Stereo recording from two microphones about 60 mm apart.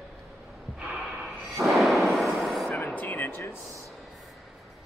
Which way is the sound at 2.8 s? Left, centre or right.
Left.